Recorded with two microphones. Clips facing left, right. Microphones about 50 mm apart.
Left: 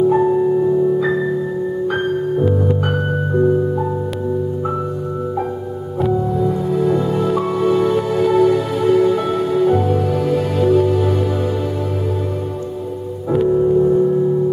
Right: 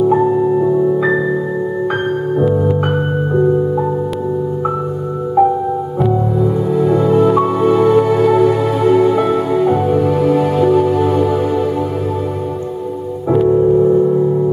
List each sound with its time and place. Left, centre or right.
0.1 s music: centre
6.7 s music: centre
10.0 s music: right
13.5 s music: right